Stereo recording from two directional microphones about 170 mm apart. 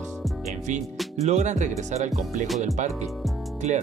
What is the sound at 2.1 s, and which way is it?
Music, centre (ahead or behind).